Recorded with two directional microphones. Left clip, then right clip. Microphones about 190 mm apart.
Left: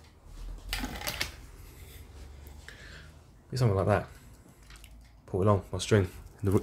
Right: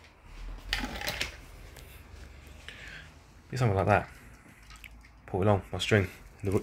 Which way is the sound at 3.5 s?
20° left (ahead or behind).